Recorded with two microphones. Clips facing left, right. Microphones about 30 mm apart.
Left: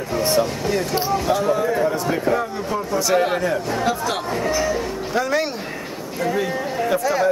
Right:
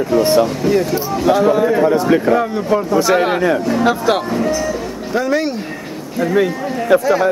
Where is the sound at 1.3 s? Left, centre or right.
Right.